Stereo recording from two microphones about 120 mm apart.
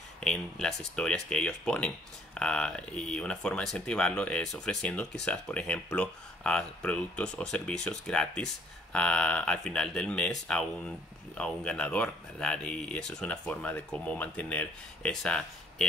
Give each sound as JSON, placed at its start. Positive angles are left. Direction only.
{"t": 0.2, "sound": "speech", "side_deg": 5}